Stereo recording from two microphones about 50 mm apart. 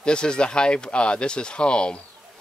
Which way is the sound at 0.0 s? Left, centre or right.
Centre.